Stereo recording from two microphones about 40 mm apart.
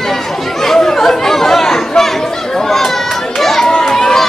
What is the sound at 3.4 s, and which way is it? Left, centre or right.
Crowd, centre.